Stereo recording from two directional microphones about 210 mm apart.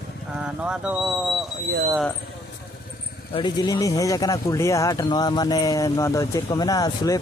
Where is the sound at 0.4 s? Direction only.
5° right (ahead or behind).